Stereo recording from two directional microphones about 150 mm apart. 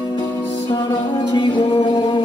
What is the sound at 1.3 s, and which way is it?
Music, 35° left (ahead or behind).